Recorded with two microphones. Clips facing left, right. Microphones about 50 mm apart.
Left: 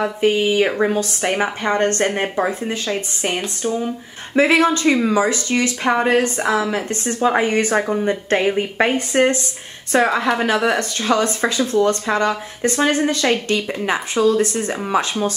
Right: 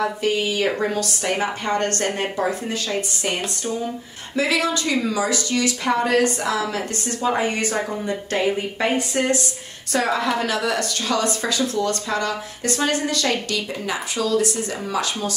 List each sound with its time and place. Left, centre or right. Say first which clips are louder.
0.0 s a woman's voice: left 4 dB; left
4.4 s a woman's voice: left 6 dB; left